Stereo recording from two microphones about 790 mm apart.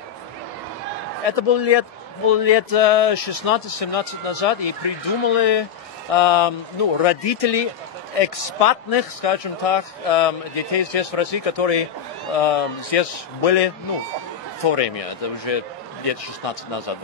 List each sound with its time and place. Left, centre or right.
1.3 s a man's voice: left